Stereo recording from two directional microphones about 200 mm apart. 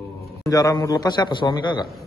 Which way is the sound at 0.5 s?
15° left (ahead or behind).